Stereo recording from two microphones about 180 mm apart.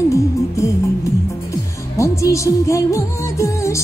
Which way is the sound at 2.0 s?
15° left (ahead or behind).